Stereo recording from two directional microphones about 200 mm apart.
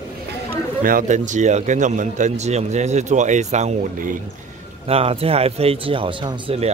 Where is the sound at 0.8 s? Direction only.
40° right (ahead or behind).